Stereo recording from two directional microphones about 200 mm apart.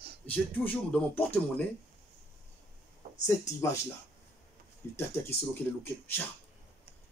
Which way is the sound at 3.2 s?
15° left (ahead or behind).